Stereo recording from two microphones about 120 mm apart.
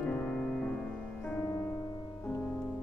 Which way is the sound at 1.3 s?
30° left (ahead or behind).